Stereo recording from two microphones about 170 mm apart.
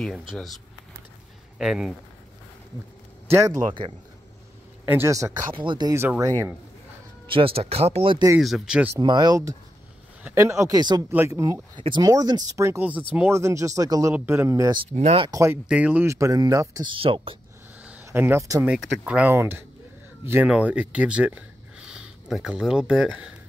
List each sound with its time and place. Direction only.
0.3 s speech: centre (ahead or behind)
1.6 s speech: centre (ahead or behind)
3.3 s speech: 15° right (ahead or behind)
4.8 s speech: 15° right (ahead or behind)
5.5 s speech: 30° right (ahead or behind)
7.2 s speech: 30° right (ahead or behind)
8.4 s speech: centre (ahead or behind)
9.0 s speech: 25° right (ahead or behind)
15.0 s speech: 35° right (ahead or behind)
15.3 s speech: 15° right (ahead or behind); by 17.4 s 30° right (ahead or behind)
17.8 s speech: 10° right (ahead or behind)